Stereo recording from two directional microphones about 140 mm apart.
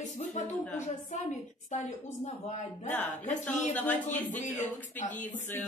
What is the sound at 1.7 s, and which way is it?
A woman's voice, 60° left (ahead or behind).